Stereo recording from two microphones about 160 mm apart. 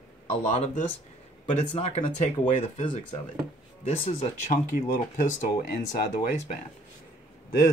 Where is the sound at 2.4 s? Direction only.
35° left (ahead or behind).